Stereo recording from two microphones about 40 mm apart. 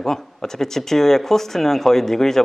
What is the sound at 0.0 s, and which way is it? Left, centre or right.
Speech, centre.